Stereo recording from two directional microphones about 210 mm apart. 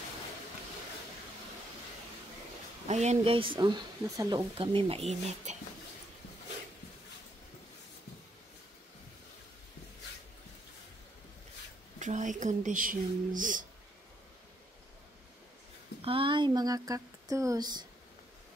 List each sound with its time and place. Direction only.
2.9 s speech: 30° right (ahead or behind)
12.0 s speech: 35° right (ahead or behind)
16.0 s speech: 25° right (ahead or behind)